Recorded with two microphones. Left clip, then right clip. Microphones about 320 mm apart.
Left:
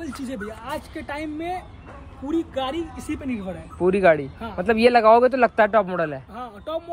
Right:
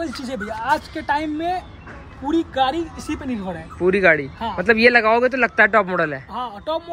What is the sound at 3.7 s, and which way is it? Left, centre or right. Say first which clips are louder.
Speech: right 2 dB; centre.